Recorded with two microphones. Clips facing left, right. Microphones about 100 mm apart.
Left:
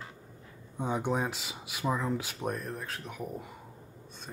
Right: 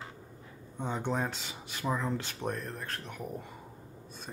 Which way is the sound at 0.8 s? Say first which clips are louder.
Left 2 dB; 10° left (ahead or behind).